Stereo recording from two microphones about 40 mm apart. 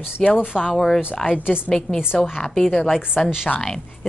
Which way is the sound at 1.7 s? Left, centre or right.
Centre.